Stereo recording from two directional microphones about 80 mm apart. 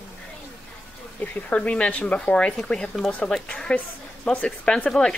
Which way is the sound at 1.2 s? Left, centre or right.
Left.